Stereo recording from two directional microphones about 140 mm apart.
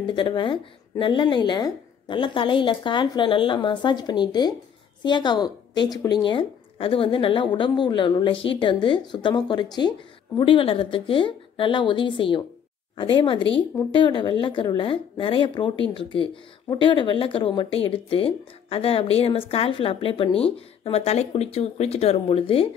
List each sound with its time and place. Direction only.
0.0 s speech: 35° left (ahead or behind)